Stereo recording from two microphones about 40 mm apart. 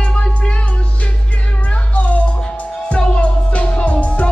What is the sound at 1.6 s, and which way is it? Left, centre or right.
Music, left.